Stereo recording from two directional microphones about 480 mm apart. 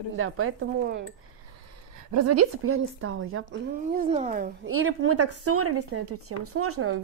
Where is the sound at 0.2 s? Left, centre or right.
Right.